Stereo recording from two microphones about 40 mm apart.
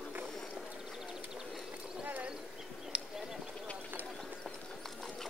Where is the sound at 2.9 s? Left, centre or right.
Right.